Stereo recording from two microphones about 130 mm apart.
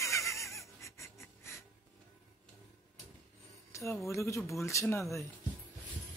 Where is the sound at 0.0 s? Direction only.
25° left (ahead or behind).